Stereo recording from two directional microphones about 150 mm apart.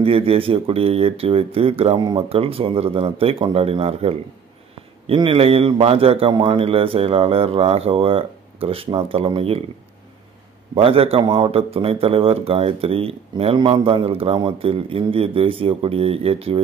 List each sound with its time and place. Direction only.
0.0 s a man's voice: 40° right (ahead or behind)
10.7 s a man's voice: 40° right (ahead or behind)